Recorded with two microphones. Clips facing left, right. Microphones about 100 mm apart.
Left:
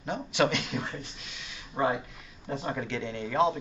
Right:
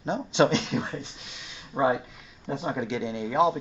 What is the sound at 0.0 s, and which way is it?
Speech, 25° right (ahead or behind).